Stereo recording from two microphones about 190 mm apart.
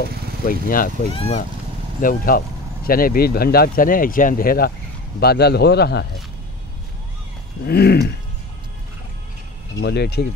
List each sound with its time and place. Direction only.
0.5 s speech: 45° left (ahead or behind)
1.1 s speech: 30° left (ahead or behind)
2.0 s a man's voice: 45° left (ahead or behind)
7.6 s a man's voice: 55° left (ahead or behind)
9.8 s a man's voice: 60° left (ahead or behind)